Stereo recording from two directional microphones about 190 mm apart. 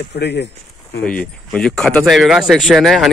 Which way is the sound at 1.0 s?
5° left (ahead or behind).